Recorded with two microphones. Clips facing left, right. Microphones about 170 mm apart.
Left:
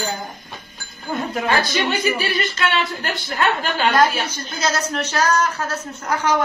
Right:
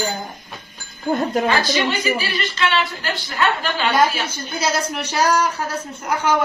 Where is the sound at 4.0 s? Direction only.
10° right (ahead or behind).